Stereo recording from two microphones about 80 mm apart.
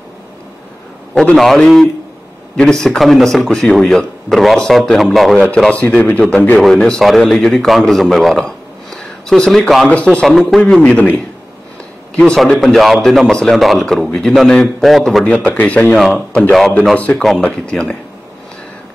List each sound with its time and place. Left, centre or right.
1.3 s a man's voice: centre
5.7 s speech: centre
6.6 s a man's voice: centre
9.8 s speech: centre
10.2 s a man's voice: centre
10.8 s speech: centre
12.2 s a man's voice: centre
15.2 s a man's voice: centre
16.9 s speech: centre
17.2 s speech: centre